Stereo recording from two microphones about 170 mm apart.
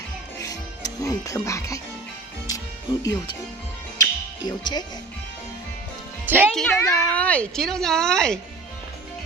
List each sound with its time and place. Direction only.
0.4 s music: 20° left (ahead or behind)
6.2 s speech: 10° right (ahead or behind)
6.7 s speech: 15° left (ahead or behind)